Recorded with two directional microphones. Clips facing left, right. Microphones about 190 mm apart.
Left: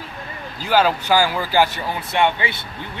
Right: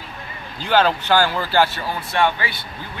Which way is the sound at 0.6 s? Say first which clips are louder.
Even; 5° left (ahead or behind).